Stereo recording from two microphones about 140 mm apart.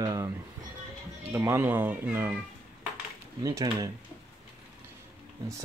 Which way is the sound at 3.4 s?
25° right (ahead or behind).